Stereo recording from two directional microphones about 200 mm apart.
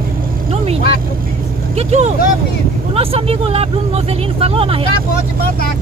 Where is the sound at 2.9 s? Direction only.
30° right (ahead or behind).